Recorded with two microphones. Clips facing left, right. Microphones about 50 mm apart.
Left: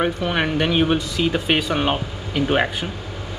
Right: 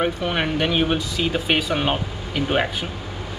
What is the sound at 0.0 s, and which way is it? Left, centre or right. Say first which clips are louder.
Speech: left 1 dB; centre.